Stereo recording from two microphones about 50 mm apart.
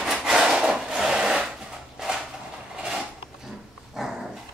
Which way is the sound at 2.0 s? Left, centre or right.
Centre.